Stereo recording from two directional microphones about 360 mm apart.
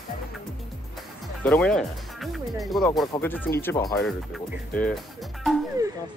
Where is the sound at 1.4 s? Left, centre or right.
Centre.